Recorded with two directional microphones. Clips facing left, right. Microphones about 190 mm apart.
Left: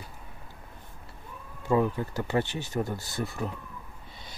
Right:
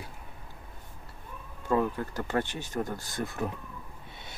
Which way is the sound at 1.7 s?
10° left (ahead or behind).